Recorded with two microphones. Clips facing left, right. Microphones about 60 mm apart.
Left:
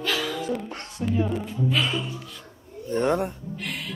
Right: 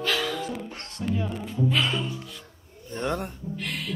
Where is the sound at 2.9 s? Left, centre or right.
Left.